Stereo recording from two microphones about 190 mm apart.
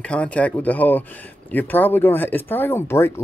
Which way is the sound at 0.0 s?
5° left (ahead or behind).